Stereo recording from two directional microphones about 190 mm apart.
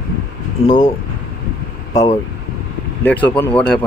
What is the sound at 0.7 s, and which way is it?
Speech, 40° left (ahead or behind).